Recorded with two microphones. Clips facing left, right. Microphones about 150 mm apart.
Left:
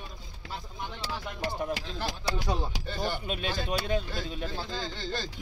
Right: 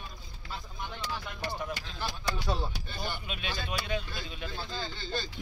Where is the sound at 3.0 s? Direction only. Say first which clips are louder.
Left 6 dB; 40° left (ahead or behind).